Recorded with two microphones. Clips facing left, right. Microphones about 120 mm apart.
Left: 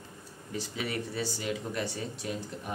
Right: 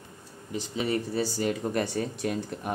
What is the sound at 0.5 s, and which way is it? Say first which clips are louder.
Speech: right 6 dB; 25° right (ahead or behind).